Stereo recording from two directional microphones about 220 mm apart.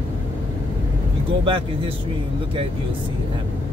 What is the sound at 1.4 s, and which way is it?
Speech, 25° right (ahead or behind).